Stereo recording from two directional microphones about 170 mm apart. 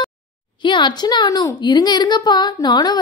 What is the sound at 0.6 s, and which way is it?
A woman's voice, 25° left (ahead or behind).